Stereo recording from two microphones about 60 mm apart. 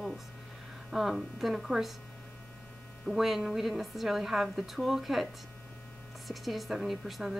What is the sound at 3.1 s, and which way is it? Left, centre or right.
Speech, centre.